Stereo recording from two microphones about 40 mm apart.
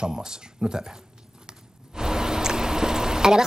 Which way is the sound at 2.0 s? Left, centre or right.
Centre.